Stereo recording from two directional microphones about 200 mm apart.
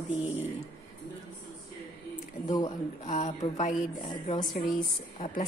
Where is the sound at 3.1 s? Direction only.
40° left (ahead or behind).